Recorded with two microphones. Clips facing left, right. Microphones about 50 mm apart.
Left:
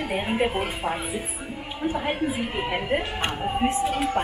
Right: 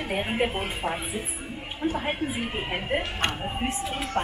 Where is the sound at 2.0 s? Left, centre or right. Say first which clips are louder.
Left 3 dB; centre.